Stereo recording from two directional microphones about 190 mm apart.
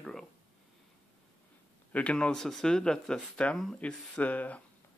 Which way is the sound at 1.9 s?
5° left (ahead or behind).